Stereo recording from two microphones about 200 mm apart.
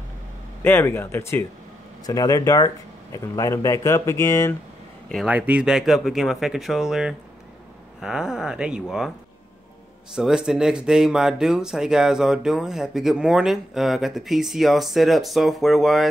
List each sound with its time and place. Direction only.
0.6 s speech: 10° left (ahead or behind)
5.1 s speech: 5° right (ahead or behind)
10.1 s speech: 5° right (ahead or behind)